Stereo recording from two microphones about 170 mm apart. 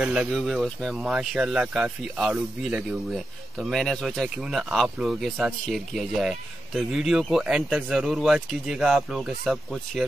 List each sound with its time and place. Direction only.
0.0 s speech: 5° right (ahead or behind)